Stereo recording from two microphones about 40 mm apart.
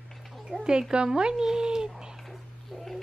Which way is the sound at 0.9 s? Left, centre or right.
Right.